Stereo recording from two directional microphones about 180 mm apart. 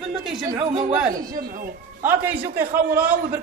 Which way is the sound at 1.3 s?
55° right (ahead or behind).